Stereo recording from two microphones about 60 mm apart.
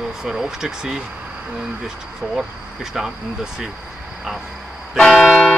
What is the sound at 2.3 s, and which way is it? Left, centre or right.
Speech, centre.